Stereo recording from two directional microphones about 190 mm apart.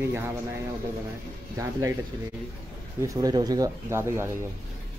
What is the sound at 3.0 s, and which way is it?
Speech, 20° right (ahead or behind).